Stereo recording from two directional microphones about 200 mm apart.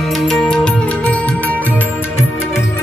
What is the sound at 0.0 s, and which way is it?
Music, centre (ahead or behind).